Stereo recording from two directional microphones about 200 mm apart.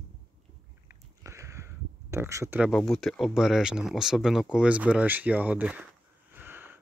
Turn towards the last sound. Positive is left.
turn(degrees=-10)  # may be behind; listen again after turning